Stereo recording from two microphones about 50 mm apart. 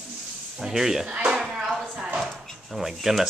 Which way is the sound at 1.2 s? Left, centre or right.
Centre.